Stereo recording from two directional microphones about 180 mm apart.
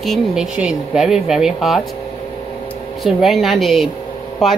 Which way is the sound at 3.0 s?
Centre (ahead or behind).